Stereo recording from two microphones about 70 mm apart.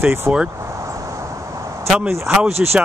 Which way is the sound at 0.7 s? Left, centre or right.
Right.